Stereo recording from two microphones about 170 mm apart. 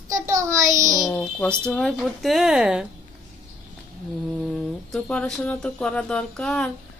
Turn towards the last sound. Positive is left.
turn(degrees=5)  # may be behind; listen again after turning